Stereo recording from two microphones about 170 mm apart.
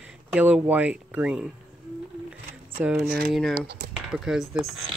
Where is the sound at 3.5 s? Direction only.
75° right (ahead or behind).